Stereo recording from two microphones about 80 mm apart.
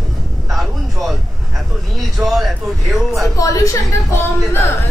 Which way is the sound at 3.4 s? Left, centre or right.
Left.